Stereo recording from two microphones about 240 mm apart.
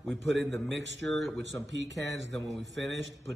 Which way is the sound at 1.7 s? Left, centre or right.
Right.